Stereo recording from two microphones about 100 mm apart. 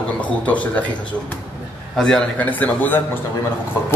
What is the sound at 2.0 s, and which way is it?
Speech, 5° left (ahead or behind).